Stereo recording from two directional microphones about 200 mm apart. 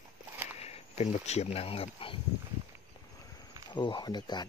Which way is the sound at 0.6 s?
30° left (ahead or behind).